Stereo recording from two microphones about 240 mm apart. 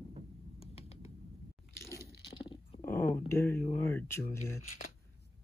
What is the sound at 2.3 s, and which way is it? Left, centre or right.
Dog, left.